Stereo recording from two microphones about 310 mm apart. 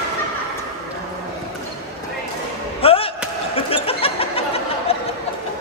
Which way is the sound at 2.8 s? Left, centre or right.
Centre.